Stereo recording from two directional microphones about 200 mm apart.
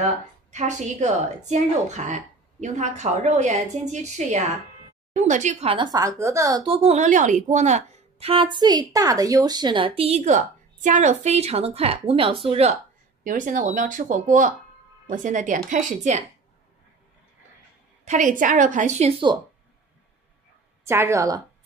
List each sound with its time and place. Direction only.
0.0 s a woman's voice: 35° right (ahead or behind)
13.2 s a woman's voice: 40° right (ahead or behind)
18.0 s a woman's voice: 40° right (ahead or behind)
20.8 s a woman's voice: 15° right (ahead or behind)